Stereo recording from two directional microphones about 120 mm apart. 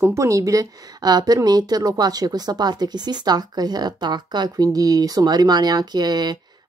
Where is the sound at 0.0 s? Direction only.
25° right (ahead or behind).